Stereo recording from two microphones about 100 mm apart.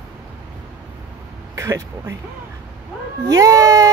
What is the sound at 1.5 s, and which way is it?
Speech, 35° right (ahead or behind).